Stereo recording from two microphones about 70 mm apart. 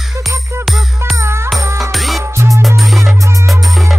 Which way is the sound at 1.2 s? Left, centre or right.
Right.